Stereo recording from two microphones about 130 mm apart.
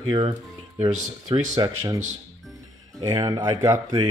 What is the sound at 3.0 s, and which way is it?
Speech, 30° right (ahead or behind).